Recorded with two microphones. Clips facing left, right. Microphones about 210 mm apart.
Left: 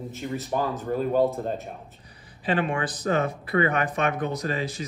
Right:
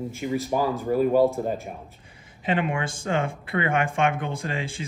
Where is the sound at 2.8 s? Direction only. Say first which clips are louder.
Left 1 dB; 30° right (ahead or behind).